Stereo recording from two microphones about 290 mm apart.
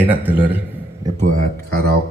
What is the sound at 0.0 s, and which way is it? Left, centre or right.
Speech, centre.